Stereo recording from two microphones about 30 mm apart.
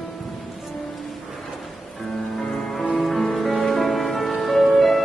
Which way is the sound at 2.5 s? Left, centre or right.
Centre.